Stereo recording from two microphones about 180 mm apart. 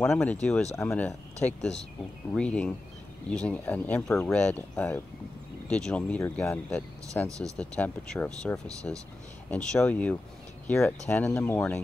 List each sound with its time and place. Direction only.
0.0 s speech: 10° left (ahead or behind)
7.2 s speech: 20° right (ahead or behind)
7.5 s speech: 5° left (ahead or behind)